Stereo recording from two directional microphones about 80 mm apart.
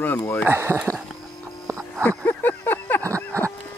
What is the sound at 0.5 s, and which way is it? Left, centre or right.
Speech, right.